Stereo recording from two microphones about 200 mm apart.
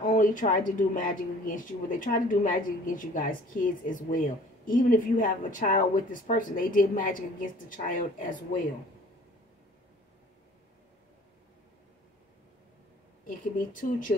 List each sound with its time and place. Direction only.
0.0 s speech: 40° left (ahead or behind)
13.3 s speech: 45° left (ahead or behind)